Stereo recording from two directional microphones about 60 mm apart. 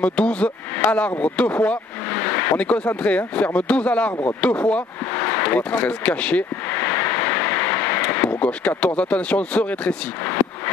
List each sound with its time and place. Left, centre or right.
0.0 s speech: left
2.0 s vehicle: left
3.0 s speech: left
5.1 s a sound: left